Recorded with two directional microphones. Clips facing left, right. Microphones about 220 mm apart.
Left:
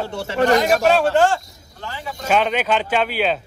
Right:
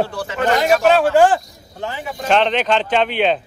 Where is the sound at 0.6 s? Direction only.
Centre (ahead or behind).